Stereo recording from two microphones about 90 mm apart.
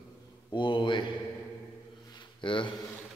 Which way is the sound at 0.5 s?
65° left (ahead or behind).